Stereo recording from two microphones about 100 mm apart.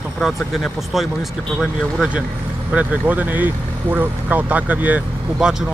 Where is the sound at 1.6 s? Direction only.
5° right (ahead or behind).